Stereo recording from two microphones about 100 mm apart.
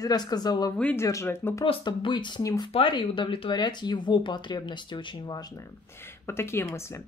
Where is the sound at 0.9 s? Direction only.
30° left (ahead or behind).